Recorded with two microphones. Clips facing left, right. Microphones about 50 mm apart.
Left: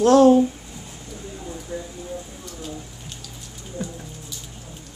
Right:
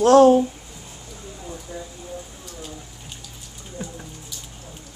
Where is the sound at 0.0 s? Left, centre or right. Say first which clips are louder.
Right 1 dB; right.